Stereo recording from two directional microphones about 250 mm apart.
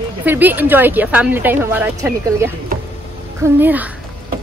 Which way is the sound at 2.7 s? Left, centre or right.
Right.